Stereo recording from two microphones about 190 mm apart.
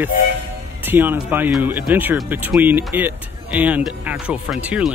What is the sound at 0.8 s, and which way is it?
Speech, 10° right (ahead or behind).